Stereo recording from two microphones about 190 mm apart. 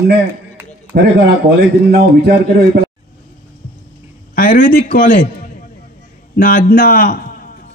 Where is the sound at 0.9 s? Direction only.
55° right (ahead or behind).